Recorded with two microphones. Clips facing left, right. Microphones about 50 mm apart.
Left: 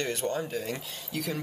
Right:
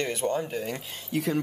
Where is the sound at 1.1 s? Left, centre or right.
Right.